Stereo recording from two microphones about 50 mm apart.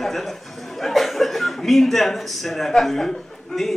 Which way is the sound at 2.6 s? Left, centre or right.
Centre.